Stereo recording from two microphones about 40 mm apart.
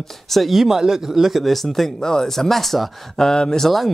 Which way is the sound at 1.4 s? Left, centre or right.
Centre.